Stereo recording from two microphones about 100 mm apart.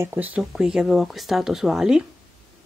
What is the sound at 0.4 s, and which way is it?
Speech, 5° right (ahead or behind).